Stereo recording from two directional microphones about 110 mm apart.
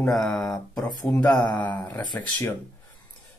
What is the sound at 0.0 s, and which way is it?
Speech, 5° left (ahead or behind).